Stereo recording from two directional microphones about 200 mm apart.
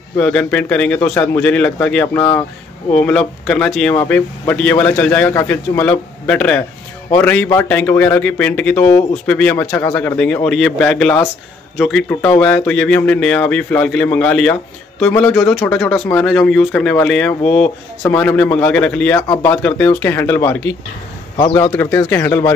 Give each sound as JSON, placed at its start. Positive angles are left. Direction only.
{"t": 0.2, "sound": "a man's voice", "side_deg": 5}